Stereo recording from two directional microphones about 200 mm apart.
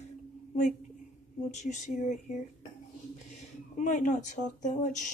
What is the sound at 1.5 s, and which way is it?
Speech, 35° left (ahead or behind).